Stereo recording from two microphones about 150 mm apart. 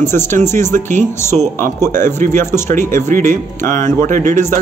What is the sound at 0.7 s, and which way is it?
Speech, 55° right (ahead or behind).